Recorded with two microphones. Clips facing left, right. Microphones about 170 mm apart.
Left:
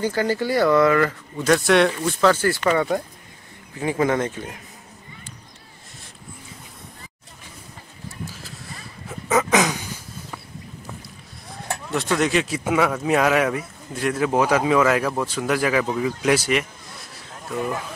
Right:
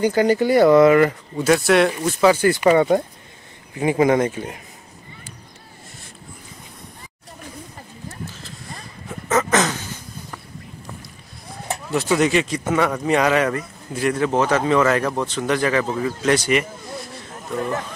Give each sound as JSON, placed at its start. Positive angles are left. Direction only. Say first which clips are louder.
{"t": 0.0, "sound": "speech", "louder": "right 5 dB", "side_deg": -20}
{"t": 1.4, "sound": "speech", "louder": "right 1 dB", "side_deg": -5}
{"t": 9.3, "sound": "dog", "louder": "even", "side_deg": 10}
{"t": 11.9, "sound": "speech", "louder": "right 3 dB", "side_deg": 0}
{"t": 16.2, "sound": "a sound", "louder": "right 3 dB", "side_deg": 5}